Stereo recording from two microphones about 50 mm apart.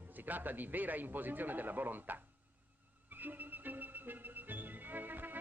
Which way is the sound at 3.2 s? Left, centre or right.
Right.